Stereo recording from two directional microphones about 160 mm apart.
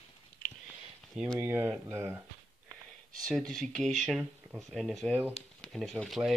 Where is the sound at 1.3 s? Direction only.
15° right (ahead or behind).